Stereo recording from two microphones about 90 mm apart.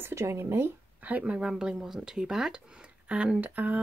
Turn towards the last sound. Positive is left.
turn(degrees=-20)  # may be behind; listen again after turning